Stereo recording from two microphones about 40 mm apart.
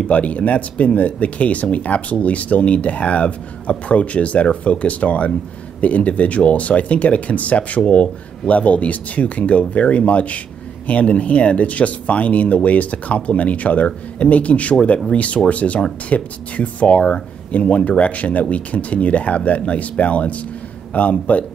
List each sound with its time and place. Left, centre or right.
0.0 s speech: left